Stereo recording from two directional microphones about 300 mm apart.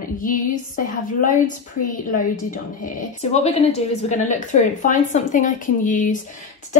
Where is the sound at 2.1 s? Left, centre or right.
Left.